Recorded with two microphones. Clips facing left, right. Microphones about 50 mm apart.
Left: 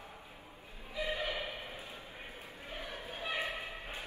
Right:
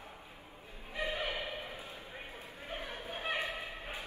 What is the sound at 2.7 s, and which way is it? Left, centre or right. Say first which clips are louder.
Chatter: right 2 dB; right.